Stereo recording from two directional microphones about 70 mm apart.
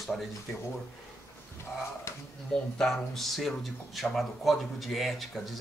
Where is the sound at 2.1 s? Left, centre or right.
Left.